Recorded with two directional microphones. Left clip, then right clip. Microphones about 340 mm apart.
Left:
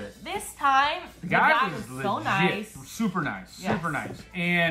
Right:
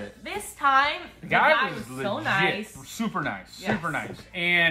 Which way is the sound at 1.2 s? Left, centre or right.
Centre.